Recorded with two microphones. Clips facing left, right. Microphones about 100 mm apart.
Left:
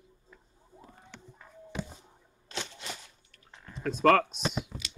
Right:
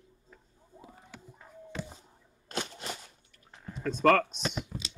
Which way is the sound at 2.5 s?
45° right (ahead or behind).